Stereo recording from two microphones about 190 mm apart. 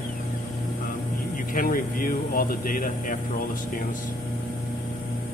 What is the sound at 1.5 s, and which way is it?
Speech, 50° left (ahead or behind).